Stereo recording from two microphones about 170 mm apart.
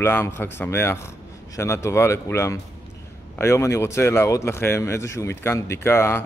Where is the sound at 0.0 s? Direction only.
10° left (ahead or behind).